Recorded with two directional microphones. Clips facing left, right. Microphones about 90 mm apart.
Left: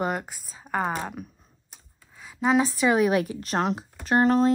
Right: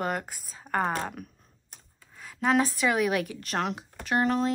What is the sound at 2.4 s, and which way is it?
Speech, 5° left (ahead or behind).